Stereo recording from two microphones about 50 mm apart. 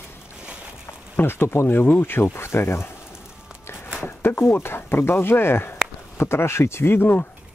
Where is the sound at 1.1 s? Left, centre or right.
Left.